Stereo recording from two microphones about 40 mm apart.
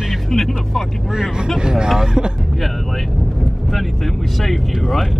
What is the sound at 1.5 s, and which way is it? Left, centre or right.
Speech, centre.